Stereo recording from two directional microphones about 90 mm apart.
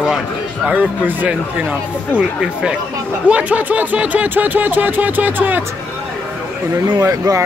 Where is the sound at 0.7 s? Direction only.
20° right (ahead or behind).